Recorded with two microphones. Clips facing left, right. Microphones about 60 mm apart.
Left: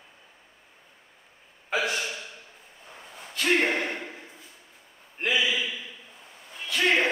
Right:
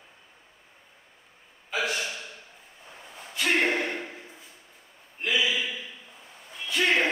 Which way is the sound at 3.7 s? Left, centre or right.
Centre.